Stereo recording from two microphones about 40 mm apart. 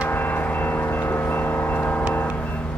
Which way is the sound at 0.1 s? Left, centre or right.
Left.